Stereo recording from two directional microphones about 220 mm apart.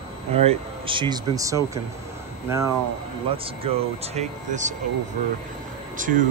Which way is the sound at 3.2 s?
25° right (ahead or behind).